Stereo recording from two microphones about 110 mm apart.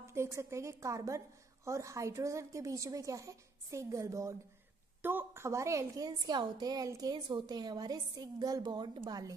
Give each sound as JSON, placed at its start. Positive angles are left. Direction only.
{"t": 0.0, "sound": "a woman's voice", "side_deg": -25}